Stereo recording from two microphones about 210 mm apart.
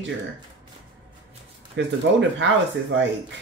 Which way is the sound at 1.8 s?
60° right (ahead or behind).